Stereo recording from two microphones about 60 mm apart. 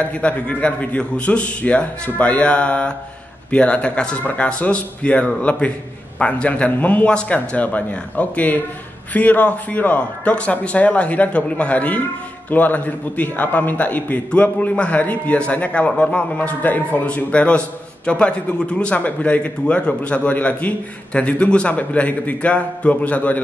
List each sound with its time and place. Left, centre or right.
0.1 s a man's voice: left